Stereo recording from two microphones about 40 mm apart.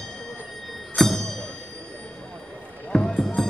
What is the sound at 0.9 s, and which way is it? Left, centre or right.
Music, centre.